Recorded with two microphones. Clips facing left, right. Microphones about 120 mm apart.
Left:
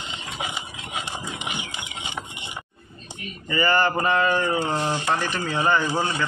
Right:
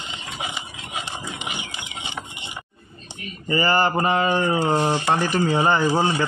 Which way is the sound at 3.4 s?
30° right (ahead or behind).